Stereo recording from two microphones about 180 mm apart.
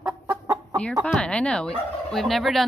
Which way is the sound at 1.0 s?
5° left (ahead or behind).